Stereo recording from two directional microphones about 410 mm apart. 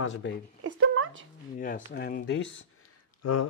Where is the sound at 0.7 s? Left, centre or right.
Right.